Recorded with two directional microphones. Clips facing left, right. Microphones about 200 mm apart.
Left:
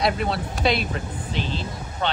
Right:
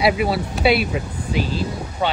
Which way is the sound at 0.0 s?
5° right (ahead or behind).